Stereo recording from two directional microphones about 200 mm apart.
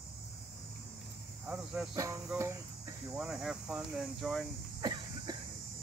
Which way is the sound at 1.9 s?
15° right (ahead or behind).